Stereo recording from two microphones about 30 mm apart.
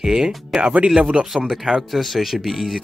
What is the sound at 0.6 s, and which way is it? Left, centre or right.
Speech, right.